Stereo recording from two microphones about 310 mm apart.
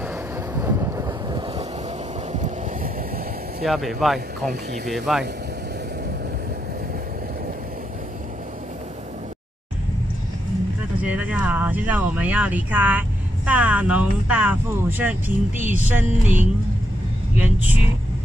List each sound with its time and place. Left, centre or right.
0.6 s vehicle: centre
2.3 s vehicle: right
3.6 s speech: centre
11.0 s a sound: centre
13.5 s speech: centre